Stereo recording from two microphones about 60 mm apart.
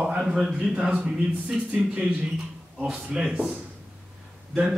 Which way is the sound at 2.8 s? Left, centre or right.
Centre.